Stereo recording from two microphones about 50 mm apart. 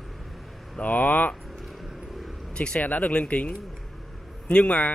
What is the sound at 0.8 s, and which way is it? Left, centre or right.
Speech, left.